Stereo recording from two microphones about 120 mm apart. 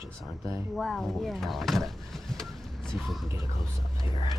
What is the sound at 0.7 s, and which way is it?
Speech, 5° left (ahead or behind).